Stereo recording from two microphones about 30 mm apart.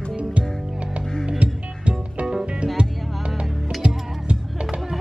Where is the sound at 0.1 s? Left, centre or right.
Right.